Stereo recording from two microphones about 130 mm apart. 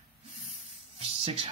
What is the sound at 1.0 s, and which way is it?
Speech, 50° right (ahead or behind).